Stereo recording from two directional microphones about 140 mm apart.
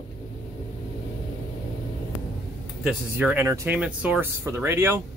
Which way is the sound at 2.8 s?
10° right (ahead or behind).